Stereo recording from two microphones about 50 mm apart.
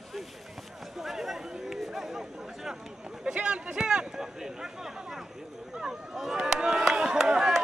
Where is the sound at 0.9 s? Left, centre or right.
Centre.